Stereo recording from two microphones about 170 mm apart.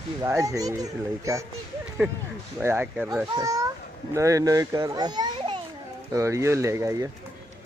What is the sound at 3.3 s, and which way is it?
A child's voice, 20° right (ahead or behind).